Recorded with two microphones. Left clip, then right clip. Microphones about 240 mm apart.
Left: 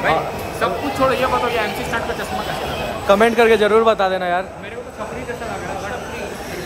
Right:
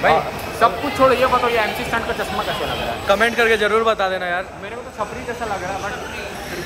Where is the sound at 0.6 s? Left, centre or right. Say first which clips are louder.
Right 4 dB; centre.